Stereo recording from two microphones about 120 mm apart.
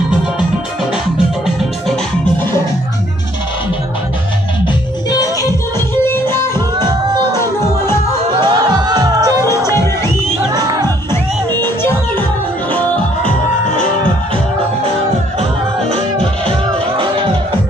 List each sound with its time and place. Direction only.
8.4 s music: 35° right (ahead or behind)
11.6 s music: 15° left (ahead or behind)